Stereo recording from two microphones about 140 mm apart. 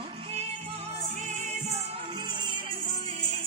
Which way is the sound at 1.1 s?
60° right (ahead or behind).